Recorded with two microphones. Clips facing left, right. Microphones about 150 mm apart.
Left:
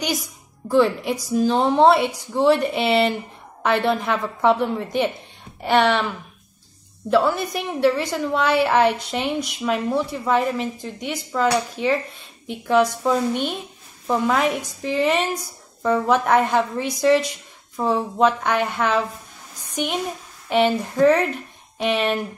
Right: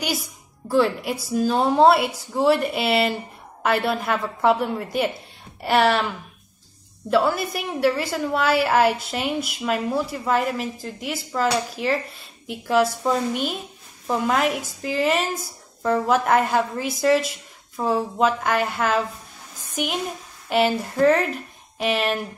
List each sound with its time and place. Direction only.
0.7 s a woman's voice: 5° right (ahead or behind)
7.3 s a woman's voice: 5° right (ahead or behind)